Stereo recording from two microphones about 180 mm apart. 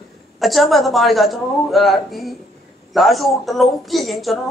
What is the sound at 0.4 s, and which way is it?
Speech, centre (ahead or behind).